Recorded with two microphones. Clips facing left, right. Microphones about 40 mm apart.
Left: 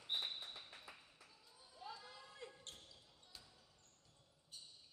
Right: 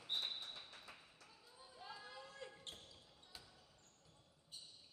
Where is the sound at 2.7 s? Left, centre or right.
Centre.